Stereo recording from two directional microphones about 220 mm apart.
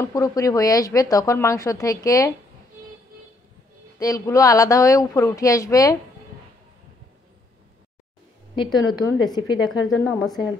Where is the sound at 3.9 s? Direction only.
15° left (ahead or behind).